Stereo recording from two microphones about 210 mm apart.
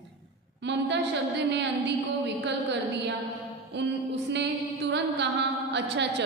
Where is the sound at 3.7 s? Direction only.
55° right (ahead or behind).